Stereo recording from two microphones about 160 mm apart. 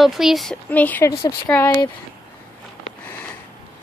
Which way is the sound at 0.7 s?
10° left (ahead or behind).